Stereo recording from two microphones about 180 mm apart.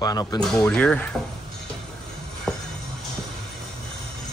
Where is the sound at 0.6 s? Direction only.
5° left (ahead or behind).